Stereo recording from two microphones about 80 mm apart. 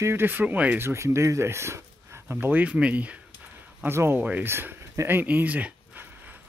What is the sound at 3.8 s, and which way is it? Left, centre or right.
Speech, right.